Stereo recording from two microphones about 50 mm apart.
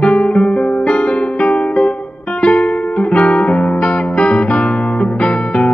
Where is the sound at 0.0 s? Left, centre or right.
Left.